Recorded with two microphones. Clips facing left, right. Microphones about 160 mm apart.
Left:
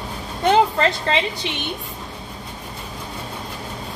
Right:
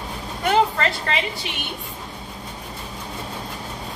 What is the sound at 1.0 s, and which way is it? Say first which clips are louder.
Speech: left 4 dB; 25° left (ahead or behind).